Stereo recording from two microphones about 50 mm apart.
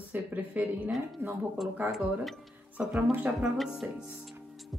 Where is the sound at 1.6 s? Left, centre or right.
Centre.